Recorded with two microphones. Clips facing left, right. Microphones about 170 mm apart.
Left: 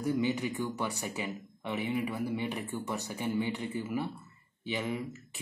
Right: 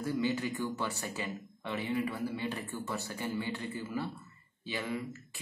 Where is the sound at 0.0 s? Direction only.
15° left (ahead or behind).